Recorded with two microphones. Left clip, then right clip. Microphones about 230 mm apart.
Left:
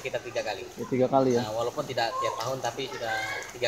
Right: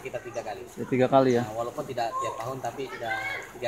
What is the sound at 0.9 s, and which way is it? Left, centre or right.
Speech, right.